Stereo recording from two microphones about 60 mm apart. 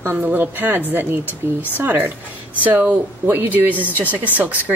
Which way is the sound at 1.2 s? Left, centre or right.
Left.